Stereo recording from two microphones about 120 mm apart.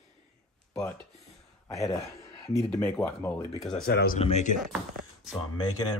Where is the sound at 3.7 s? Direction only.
65° left (ahead or behind).